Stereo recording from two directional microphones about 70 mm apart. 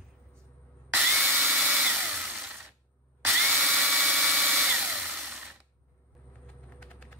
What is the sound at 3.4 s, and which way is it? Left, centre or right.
Drill, centre.